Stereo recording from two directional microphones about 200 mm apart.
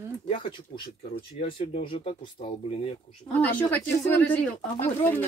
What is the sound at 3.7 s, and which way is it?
Speech, 10° left (ahead or behind).